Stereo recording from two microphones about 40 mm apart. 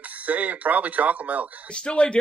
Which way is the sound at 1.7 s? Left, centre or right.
Left.